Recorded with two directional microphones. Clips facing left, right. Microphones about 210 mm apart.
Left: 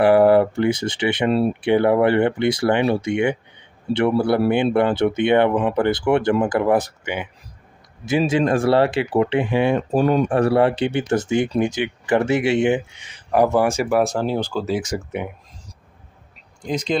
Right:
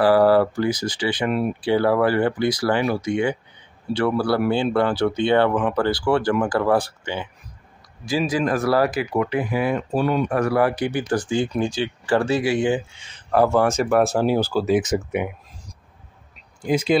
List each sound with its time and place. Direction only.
0.0 s speech: 20° left (ahead or behind)
9.9 s speech: 45° left (ahead or behind)
10.3 s speech: 30° left (ahead or behind); by 14.1 s 5° left (ahead or behind)
14.1 s speech: 10° right (ahead or behind)
16.6 s speech: 5° right (ahead or behind)